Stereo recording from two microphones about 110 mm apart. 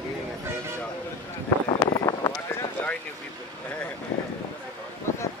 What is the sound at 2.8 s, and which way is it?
Vehicle, 20° left (ahead or behind).